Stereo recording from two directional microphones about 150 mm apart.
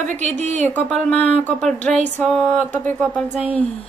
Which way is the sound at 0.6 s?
5° left (ahead or behind).